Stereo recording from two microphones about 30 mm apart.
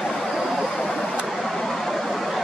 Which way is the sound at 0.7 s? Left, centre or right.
Centre.